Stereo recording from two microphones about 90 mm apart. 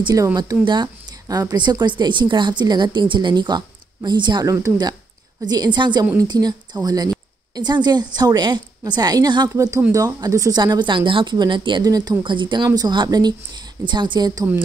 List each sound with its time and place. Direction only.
0.1 s speech: 40° right (ahead or behind); by 4.5 s 55° right (ahead or behind)
4.5 s a woman's voice: 40° right (ahead or behind)
9.5 s speech: 35° right (ahead or behind); by 11.8 s 60° right (ahead or behind)
11.8 s a woman's voice: 45° right (ahead or behind)
12.2 s speech: 60° right (ahead or behind)
12.6 s a woman's voice: 45° right (ahead or behind)